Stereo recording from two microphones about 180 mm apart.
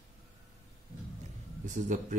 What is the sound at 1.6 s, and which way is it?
Speech, 45° right (ahead or behind).